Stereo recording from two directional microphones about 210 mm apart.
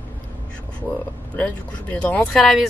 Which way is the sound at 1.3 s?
5° left (ahead or behind).